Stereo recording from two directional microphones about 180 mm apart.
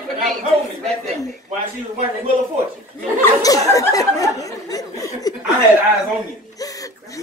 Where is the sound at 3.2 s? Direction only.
20° left (ahead or behind).